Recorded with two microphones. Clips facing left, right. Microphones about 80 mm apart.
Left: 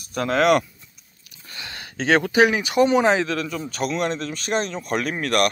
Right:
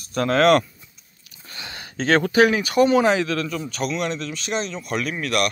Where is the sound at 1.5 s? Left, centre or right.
Centre; by 3.6 s left.